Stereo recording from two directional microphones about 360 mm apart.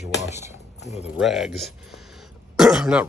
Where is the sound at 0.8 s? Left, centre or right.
Centre.